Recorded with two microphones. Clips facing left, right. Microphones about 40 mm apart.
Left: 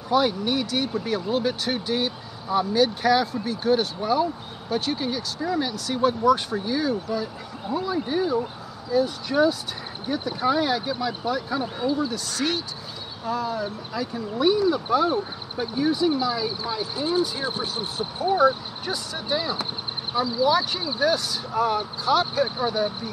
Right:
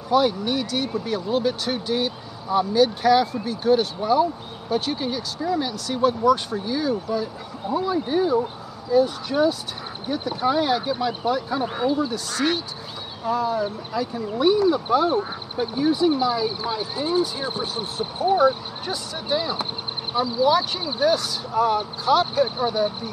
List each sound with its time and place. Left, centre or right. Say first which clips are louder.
0.1 s speech: right 2 dB; centre
11.7 s speech: right 3 dB; right
13.2 s speech: right 4 dB; centre
19.2 s speech: right 2 dB; centre